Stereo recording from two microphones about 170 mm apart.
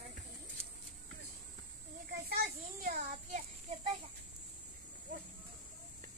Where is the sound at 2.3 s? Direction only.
65° right (ahead or behind).